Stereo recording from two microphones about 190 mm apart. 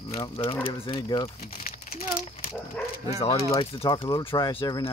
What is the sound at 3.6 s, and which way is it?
Speech, 25° left (ahead or behind).